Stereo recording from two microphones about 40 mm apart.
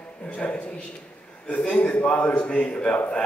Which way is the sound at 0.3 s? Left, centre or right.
Left.